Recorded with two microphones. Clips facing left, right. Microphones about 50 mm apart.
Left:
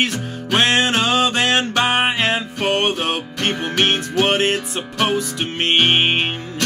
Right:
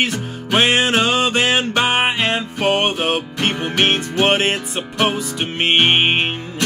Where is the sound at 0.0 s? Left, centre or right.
Centre.